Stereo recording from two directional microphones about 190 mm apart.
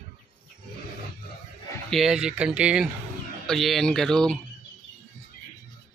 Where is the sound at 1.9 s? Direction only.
5° right (ahead or behind).